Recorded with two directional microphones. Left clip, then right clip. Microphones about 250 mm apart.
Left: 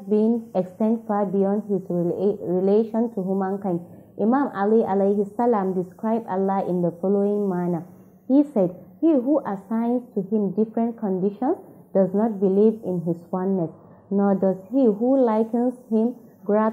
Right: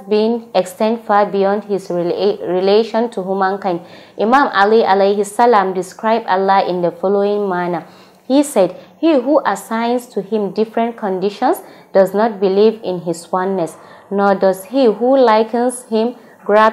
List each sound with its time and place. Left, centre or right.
0.1 s a woman's voice: centre
3.2 s a woman's voice: right
3.4 s a woman's voice: centre
6.9 s a woman's voice: centre
12.8 s a woman's voice: right
13.3 s a woman's voice: centre